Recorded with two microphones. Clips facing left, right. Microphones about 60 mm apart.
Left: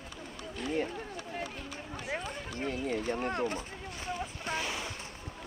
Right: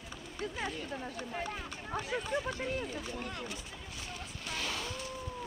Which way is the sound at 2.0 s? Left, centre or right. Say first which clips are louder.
Right 2 dB; left.